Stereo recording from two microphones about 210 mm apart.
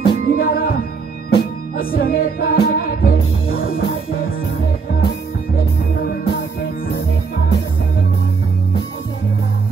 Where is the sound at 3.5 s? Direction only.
75° left (ahead or behind).